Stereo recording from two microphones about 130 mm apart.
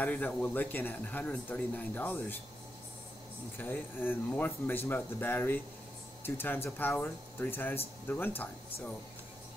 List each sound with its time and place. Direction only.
0.0 s speech: 10° left (ahead or behind)
3.5 s speech: 15° left (ahead or behind)